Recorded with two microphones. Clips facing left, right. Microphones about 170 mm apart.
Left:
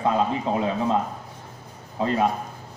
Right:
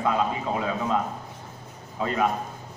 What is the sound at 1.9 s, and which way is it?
Speech, 30° left (ahead or behind).